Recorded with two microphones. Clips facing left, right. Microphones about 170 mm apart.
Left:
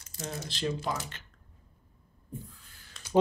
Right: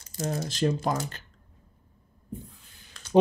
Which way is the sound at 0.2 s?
40° right (ahead or behind).